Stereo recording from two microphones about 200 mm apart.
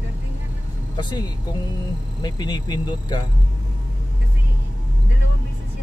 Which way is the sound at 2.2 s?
20° left (ahead or behind).